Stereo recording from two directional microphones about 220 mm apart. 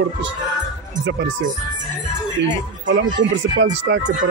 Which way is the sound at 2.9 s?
55° right (ahead or behind).